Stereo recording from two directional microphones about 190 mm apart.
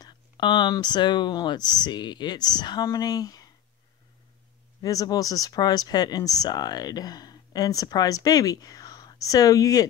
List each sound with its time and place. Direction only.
0.0 s speech: 25° left (ahead or behind)
4.8 s speech: 20° left (ahead or behind)